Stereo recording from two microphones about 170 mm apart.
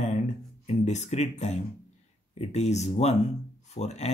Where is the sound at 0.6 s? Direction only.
40° left (ahead or behind).